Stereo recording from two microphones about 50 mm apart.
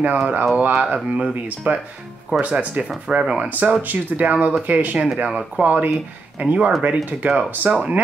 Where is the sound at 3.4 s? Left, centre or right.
Right.